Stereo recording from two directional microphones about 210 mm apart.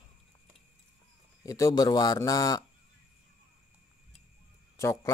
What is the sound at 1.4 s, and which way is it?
Speech, 15° left (ahead or behind).